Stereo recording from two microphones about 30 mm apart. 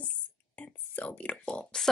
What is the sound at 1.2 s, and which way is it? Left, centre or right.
Speech, left.